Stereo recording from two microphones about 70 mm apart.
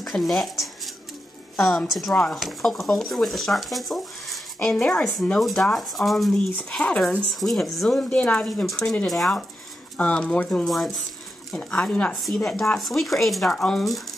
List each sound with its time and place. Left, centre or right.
0.0 s a sound: centre
1.6 s speech: centre
6.6 s speech: centre
7.3 s speech: centre
8.0 s speech: centre
9.9 s speech: centre
10.6 s speech: centre
11.5 s speech: centre
12.1 s speech: centre